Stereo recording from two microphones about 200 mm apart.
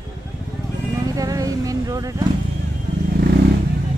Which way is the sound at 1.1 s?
15° right (ahead or behind).